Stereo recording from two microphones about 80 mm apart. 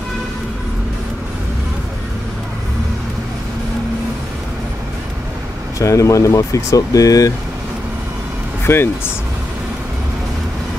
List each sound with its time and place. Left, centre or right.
5.8 s speech: left
8.6 s speech: left